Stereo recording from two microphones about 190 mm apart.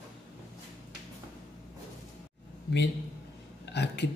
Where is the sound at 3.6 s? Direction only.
65° left (ahead or behind).